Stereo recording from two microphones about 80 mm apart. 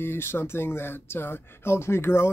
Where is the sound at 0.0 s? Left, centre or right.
Left.